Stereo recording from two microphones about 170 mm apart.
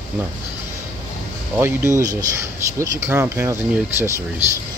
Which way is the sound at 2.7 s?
15° right (ahead or behind).